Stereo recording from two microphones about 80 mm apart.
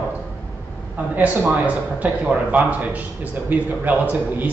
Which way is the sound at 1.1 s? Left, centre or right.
Centre.